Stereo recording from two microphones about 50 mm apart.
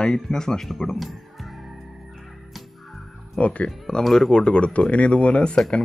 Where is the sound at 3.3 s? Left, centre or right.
Left.